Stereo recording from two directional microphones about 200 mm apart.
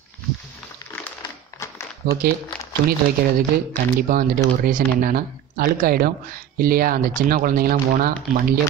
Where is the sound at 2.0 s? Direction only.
45° right (ahead or behind).